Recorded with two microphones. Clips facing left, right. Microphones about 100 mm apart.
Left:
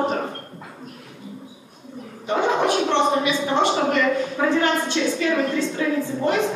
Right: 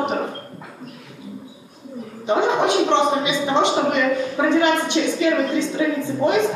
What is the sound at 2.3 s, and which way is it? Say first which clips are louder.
A woman's voice: right 2 dB; 20° right (ahead or behind).